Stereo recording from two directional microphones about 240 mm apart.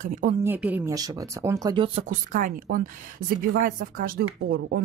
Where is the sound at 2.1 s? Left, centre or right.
Right.